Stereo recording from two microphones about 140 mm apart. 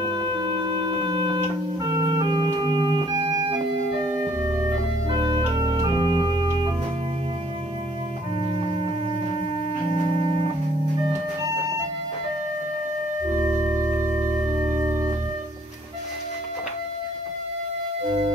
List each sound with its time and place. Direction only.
0.0 s music: 35° right (ahead or behind)
4.1 s organ: 20° right (ahead or behind)
13.4 s organ: 20° right (ahead or behind)
14.8 s music: 20° right (ahead or behind)